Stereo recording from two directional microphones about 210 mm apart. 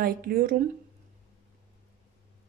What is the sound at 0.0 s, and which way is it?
Speech, 40° right (ahead or behind).